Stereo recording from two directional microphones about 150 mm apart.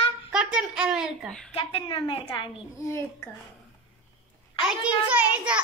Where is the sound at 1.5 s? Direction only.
40° left (ahead or behind).